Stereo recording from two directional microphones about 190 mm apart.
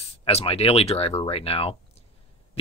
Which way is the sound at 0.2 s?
30° left (ahead or behind).